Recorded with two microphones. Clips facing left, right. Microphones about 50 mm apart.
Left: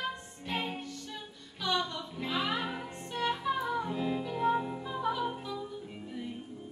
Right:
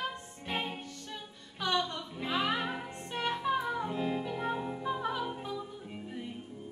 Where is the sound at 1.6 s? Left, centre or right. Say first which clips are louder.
Right 1 dB; right.